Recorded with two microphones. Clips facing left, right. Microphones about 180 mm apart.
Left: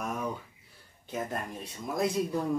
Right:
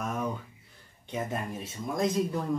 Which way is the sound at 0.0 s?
10° left (ahead or behind).